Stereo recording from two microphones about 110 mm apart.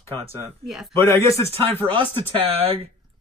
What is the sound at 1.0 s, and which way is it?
Speech, 25° left (ahead or behind).